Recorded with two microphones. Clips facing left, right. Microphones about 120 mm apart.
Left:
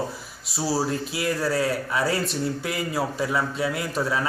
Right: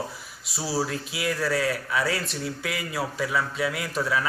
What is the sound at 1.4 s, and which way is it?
Speech, 35° left (ahead or behind).